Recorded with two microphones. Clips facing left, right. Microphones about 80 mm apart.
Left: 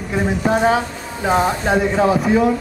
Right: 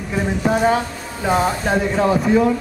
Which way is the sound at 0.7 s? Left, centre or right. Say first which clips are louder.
Left 1 dB; centre.